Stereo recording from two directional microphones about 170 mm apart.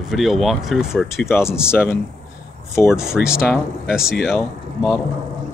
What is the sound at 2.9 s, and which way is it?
Speech, 5° right (ahead or behind).